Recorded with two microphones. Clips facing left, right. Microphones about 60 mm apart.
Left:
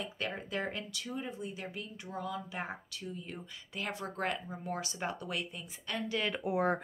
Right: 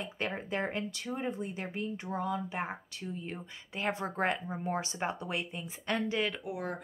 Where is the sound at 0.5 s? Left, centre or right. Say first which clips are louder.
Right 3 dB; right.